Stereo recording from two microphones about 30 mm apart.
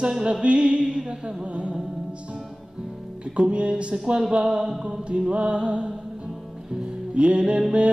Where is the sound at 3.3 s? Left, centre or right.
Right.